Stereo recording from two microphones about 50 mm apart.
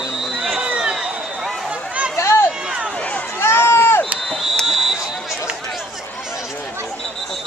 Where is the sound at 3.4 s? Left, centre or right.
Left.